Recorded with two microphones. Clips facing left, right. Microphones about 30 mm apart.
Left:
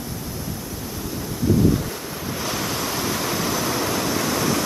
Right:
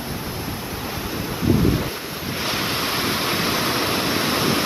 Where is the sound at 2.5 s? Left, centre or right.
Right.